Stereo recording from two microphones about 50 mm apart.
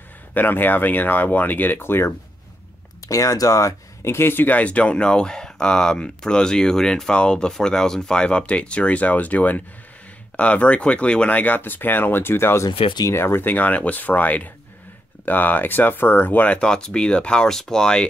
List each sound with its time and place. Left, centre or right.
0.3 s speech: left
1.8 s speech: left
3.1 s speech: left
4.6 s speech: left
13.5 s speech: left
16.4 s speech: centre